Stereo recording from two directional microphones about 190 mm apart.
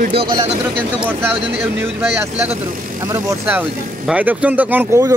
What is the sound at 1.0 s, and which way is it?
Speech, 10° right (ahead or behind).